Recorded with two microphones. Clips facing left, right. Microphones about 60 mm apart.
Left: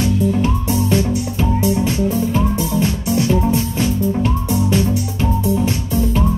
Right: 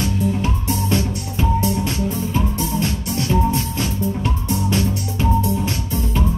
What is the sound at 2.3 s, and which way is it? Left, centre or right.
Music, left.